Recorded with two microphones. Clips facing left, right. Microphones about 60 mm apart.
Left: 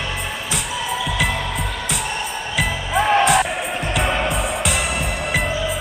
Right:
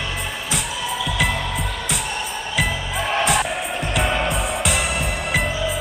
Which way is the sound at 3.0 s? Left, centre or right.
Centre.